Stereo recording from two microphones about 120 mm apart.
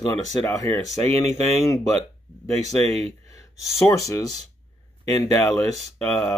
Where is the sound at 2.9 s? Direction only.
60° right (ahead or behind).